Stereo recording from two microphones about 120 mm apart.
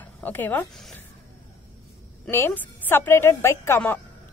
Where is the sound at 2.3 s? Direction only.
20° left (ahead or behind).